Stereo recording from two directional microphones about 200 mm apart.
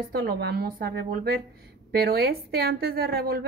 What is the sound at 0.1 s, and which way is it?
Speech, 50° right (ahead or behind).